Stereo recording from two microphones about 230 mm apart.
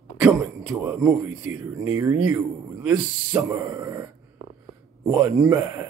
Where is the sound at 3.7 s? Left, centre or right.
Centre.